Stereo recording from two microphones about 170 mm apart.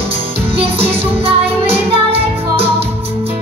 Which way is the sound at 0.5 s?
35° right (ahead or behind).